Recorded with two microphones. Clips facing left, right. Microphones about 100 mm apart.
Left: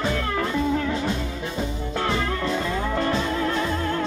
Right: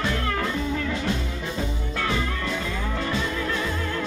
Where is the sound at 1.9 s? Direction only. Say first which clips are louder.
Left 3 dB; 35° left (ahead or behind).